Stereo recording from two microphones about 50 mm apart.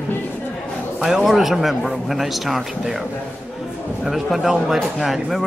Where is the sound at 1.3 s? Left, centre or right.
Centre.